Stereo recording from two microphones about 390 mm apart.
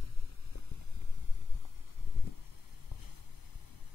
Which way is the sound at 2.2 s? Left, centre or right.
Left.